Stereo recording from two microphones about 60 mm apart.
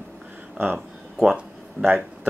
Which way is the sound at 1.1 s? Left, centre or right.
Centre.